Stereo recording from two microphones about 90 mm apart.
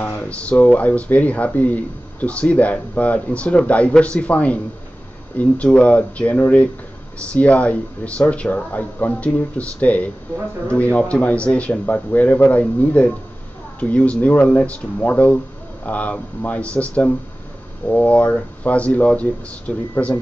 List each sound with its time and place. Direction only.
0.2 s speech: 15° left (ahead or behind)